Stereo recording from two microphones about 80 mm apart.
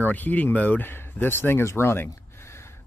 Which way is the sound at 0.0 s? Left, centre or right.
Left.